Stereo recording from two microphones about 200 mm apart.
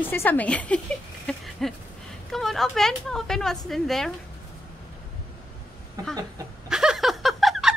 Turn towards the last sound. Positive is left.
turn(degrees=0)  # may be behind; listen again after turning